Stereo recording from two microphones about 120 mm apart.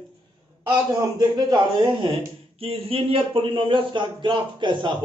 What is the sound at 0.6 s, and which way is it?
A man's voice, 35° right (ahead or behind).